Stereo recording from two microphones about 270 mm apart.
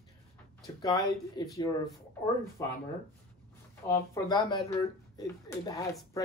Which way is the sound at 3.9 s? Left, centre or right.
Centre.